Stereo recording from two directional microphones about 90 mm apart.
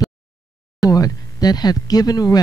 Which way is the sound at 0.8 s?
40° left (ahead or behind).